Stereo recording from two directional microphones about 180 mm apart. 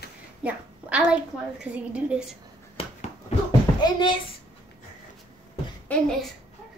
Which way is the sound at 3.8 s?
25° left (ahead or behind).